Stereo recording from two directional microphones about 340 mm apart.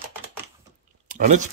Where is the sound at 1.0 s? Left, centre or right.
Right.